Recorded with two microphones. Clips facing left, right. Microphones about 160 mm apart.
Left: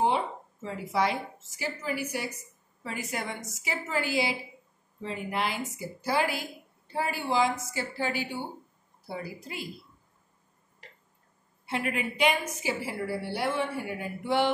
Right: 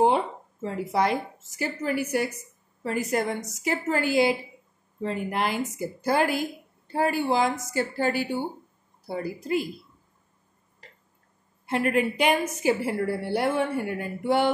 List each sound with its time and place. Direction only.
0.0 s a sound: 50° right (ahead or behind)
1.6 s a woman's voice: 50° right (ahead or behind)
11.6 s a woman's voice: 50° right (ahead or behind)